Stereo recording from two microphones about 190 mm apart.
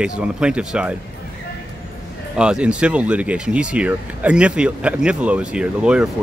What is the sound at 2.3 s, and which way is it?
Speech, 5° right (ahead or behind).